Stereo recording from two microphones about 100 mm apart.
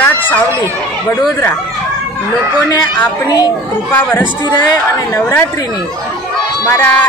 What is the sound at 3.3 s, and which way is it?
Speech, 40° left (ahead or behind).